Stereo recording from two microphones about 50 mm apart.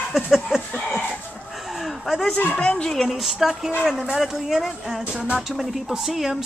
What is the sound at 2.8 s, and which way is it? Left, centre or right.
Speech, centre.